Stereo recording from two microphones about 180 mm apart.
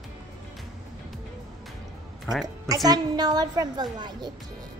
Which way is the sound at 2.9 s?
20° right (ahead or behind).